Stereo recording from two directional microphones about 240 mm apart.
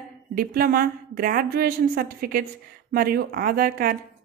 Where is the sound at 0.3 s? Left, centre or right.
Right.